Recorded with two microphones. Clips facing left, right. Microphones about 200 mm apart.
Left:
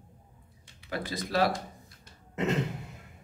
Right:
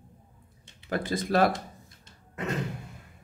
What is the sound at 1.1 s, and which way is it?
Speech, 50° right (ahead or behind).